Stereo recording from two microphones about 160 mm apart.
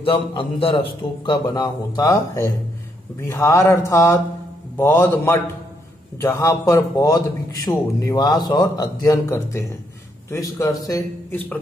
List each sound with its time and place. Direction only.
0.0 s a man's voice: 35° left (ahead or behind); by 11.6 s 10° left (ahead or behind)